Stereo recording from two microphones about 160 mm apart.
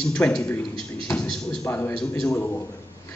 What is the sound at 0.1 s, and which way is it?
A man's voice, 10° left (ahead or behind).